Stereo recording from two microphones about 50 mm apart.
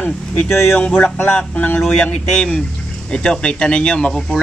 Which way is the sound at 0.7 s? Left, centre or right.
Left.